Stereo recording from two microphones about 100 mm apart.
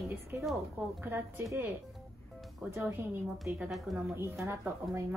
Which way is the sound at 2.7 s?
20° right (ahead or behind).